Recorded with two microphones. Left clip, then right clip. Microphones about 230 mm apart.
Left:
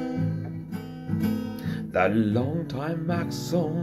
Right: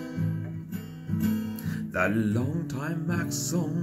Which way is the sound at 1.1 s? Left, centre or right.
Centre.